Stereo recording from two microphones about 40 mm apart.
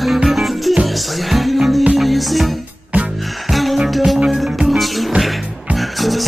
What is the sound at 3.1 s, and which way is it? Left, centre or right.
Music, centre.